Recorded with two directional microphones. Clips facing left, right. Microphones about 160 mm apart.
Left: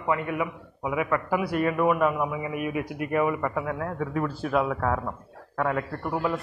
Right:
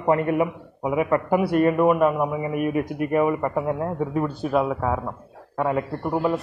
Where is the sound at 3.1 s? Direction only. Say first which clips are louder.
Right 3 dB; 25° right (ahead or behind).